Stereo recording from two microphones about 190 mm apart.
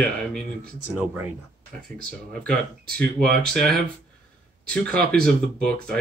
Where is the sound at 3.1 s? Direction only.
55° right (ahead or behind).